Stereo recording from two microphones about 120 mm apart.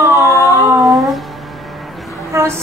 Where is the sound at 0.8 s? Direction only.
Centre (ahead or behind).